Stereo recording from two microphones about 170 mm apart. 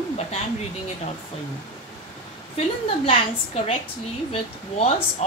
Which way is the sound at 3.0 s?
35° left (ahead or behind).